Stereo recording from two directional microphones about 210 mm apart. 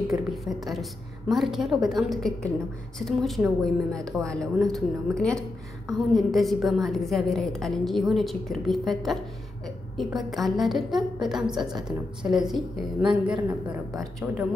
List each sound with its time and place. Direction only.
0.1 s a woman's voice: centre (ahead or behind)